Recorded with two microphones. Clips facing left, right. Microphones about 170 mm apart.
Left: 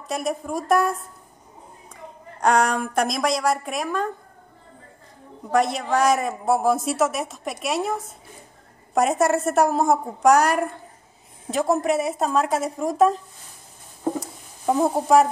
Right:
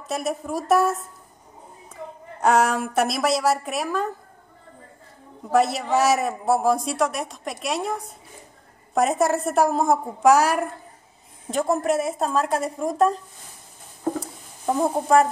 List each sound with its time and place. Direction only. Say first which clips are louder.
0.0 s speech: even; centre (ahead or behind)
2.4 s speech: even; 5° right (ahead or behind)
5.5 s speech: right 1 dB; 5° right (ahead or behind)
14.2 s a sound: left 2 dB; 5° left (ahead or behind)